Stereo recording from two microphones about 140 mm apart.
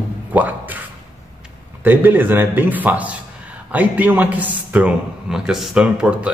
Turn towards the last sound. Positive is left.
turn(degrees=-10)  # may be behind; listen again after turning